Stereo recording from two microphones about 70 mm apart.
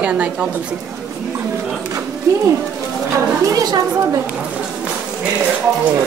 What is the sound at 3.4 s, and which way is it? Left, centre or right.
Speech, right.